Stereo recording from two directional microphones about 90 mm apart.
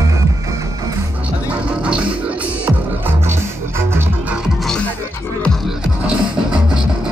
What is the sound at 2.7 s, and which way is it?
Music, 25° right (ahead or behind).